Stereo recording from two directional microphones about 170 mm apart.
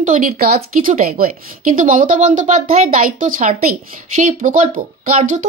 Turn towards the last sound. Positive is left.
turn(degrees=-50)  # may be behind; listen again after turning